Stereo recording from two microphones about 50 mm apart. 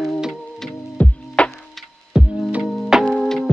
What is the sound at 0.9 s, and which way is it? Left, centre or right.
Music, left.